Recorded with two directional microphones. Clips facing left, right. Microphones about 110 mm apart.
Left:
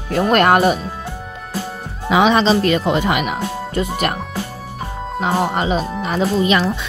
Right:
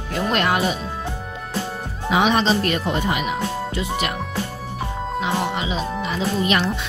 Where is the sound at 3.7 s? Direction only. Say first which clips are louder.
Left 4 dB; 50° left (ahead or behind).